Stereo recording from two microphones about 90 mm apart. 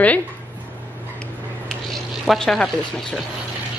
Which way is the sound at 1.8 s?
Centre (ahead or behind).